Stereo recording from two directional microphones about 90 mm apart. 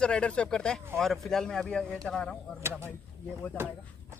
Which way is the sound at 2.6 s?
30° right (ahead or behind).